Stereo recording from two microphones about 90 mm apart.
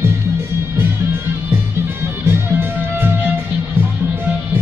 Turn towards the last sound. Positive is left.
turn(degrees=-25)  # may be behind; listen again after turning